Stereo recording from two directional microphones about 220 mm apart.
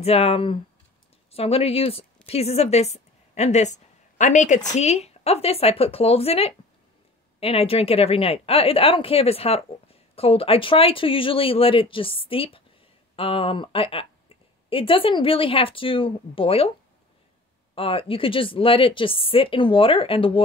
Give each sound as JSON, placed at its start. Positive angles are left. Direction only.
{"t": 0.0, "sound": "a woman's voice", "side_deg": 25}
{"t": 17.7, "sound": "a woman's voice", "side_deg": 25}